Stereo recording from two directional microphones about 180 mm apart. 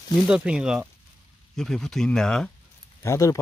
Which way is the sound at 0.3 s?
5° right (ahead or behind).